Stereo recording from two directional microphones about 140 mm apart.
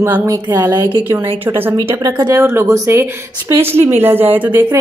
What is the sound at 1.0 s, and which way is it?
Speech, 10° right (ahead or behind).